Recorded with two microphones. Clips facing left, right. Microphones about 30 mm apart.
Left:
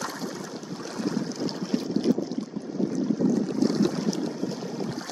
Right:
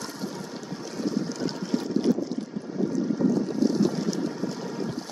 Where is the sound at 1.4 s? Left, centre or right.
Centre.